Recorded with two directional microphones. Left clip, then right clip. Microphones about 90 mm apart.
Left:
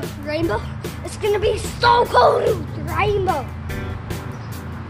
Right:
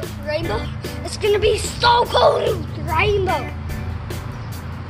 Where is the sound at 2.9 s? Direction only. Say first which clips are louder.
Right 1 dB; 35° left (ahead or behind).